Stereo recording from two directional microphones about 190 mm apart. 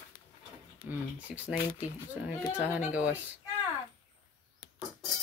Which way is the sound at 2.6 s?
10° right (ahead or behind).